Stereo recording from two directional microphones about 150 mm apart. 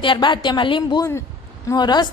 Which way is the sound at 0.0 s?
30° left (ahead or behind).